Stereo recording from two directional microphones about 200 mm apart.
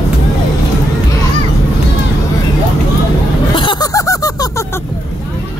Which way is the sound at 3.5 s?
20° left (ahead or behind).